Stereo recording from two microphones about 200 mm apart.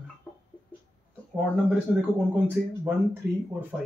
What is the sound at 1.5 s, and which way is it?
Speech, 10° right (ahead or behind).